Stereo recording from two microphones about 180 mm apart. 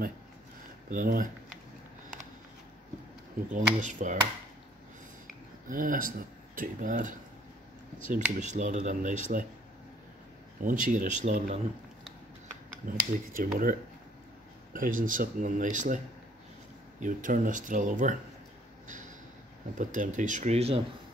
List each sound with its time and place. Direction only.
0.8 s speech: 50° right (ahead or behind)
3.5 s speech: 45° right (ahead or behind)
5.7 s speech: 50° right (ahead or behind)
10.6 s speech: 45° right (ahead or behind)
12.8 s speech: 50° right (ahead or behind)
17.0 s speech: 45° right (ahead or behind)
18.9 s a sound: 45° right (ahead or behind)
19.8 s speech: 45° right (ahead or behind)